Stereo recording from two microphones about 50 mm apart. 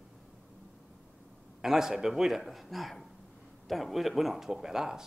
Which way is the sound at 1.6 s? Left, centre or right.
Centre.